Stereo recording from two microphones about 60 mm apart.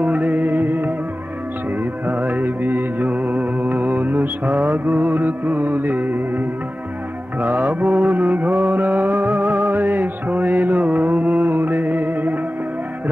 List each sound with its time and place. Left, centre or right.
0.0 s music: right
2.0 s music: right
7.4 s mantra: right